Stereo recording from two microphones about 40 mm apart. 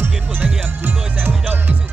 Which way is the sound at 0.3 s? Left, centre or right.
Right.